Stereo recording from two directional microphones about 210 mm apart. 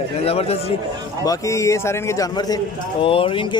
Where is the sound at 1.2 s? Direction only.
15° left (ahead or behind).